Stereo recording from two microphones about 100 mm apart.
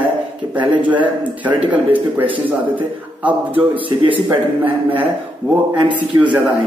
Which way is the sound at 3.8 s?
60° right (ahead or behind).